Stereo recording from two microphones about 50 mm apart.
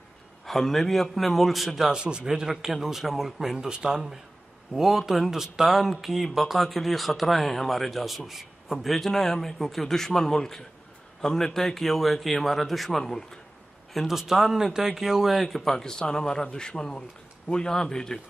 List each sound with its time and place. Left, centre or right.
0.5 s speech: centre
1.9 s a man's voice: centre
3.5 s speech: centre
13.9 s speech: centre
15.4 s speech: centre